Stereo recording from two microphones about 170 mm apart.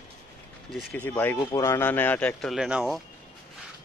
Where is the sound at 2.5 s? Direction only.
5° right (ahead or behind).